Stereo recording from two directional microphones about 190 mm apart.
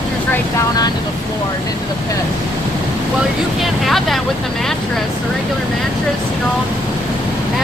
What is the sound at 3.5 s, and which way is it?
Speech, centre (ahead or behind).